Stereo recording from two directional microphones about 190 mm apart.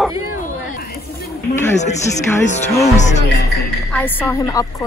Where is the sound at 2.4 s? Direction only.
35° left (ahead or behind).